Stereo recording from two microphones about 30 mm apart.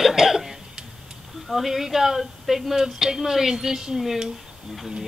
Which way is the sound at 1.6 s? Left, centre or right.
Centre.